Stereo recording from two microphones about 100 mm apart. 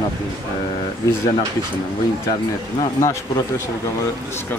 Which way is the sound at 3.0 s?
25° left (ahead or behind).